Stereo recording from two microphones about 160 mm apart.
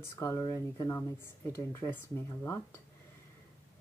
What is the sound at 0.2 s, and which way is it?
Speech, 20° left (ahead or behind).